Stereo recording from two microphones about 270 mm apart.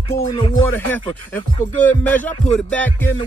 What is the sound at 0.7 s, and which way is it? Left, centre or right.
Music, centre.